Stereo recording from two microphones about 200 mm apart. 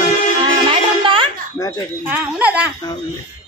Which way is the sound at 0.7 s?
25° right (ahead or behind).